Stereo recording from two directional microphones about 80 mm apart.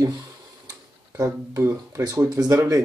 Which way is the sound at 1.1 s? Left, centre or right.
Right.